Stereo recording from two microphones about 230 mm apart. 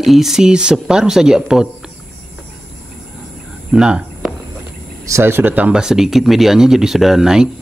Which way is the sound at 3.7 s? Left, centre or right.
Centre.